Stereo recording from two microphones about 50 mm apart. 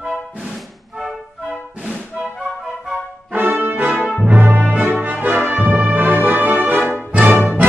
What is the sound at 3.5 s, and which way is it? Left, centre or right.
Brass instrument, right.